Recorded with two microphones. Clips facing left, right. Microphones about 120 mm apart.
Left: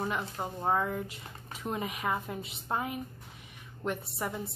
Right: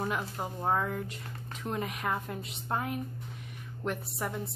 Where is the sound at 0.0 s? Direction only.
Centre (ahead or behind).